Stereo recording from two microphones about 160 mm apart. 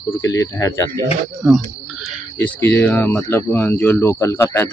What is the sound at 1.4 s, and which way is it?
Speech, 5° right (ahead or behind).